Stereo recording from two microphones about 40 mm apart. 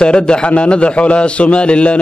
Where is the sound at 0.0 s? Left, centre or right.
Left.